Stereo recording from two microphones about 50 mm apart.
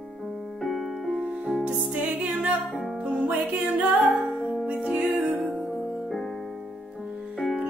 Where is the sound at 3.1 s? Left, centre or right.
Right.